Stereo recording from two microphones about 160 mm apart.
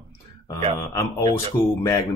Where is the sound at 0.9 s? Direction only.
20° left (ahead or behind).